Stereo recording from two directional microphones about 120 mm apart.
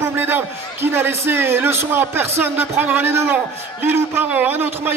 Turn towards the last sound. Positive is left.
turn(degrees=-15)  # may be behind; listen again after turning